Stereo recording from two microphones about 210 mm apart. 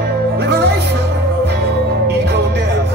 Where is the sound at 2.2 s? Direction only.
50° right (ahead or behind).